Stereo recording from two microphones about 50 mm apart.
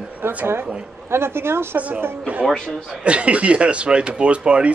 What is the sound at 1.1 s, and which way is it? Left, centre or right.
Speech, right.